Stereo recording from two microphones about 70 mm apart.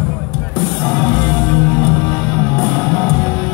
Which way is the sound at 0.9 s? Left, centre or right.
Left.